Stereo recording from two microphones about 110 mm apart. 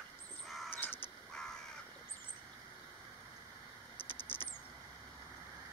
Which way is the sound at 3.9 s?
20° left (ahead or behind).